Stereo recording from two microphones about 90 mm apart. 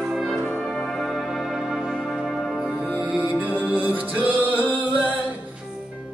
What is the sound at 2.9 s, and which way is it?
Music, 20° right (ahead or behind).